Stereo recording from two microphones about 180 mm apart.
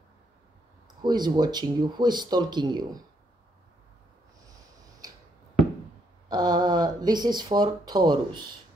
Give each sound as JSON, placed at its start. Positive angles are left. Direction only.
{"t": 1.0, "sound": "speech", "side_deg": -25}
{"t": 6.2, "sound": "speech", "side_deg": -20}